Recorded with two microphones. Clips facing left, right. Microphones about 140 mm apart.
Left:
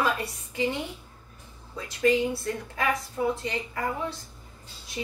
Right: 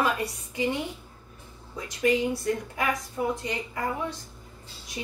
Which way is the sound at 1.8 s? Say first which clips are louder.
Left 1 dB; 15° right (ahead or behind).